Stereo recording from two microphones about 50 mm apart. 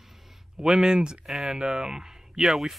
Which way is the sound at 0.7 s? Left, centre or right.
Centre.